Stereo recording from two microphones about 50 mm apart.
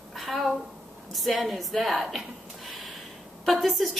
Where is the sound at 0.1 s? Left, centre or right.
Centre.